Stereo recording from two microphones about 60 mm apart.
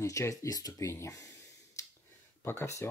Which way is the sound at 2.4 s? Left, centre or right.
Left.